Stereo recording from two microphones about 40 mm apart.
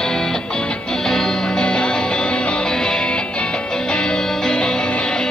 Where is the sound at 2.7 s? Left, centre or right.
Centre.